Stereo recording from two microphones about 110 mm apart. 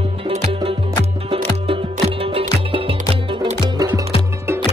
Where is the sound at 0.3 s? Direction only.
80° right.